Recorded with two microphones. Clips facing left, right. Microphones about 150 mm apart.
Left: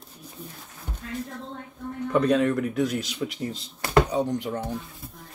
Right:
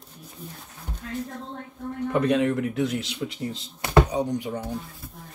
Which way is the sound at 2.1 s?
20° right (ahead or behind).